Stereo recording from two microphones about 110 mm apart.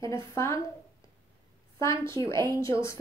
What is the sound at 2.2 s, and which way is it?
Speech, 40° right (ahead or behind).